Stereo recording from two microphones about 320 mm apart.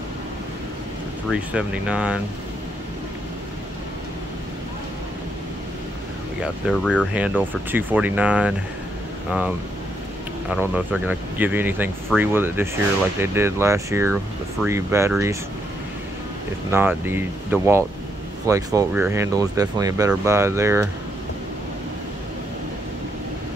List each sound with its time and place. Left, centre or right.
1.3 s speech: centre
6.4 s speech: centre
10.5 s speech: centre
16.7 s speech: centre